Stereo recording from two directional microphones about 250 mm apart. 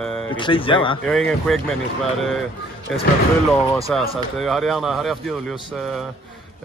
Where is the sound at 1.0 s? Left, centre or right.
Centre.